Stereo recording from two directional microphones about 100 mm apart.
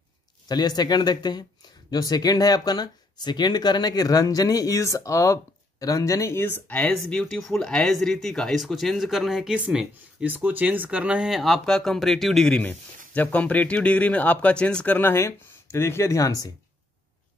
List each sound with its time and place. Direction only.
0.5 s speech: 45° left (ahead or behind); by 6.5 s 25° left (ahead or behind)
6.7 s speech: 10° left (ahead or behind)
15.0 s speech: 25° left (ahead or behind)